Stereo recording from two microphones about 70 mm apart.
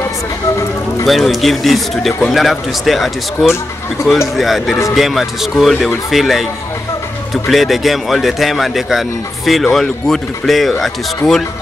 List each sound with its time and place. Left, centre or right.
1.0 s speech: centre